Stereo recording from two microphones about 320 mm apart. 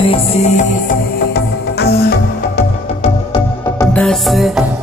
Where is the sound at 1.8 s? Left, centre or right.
Left.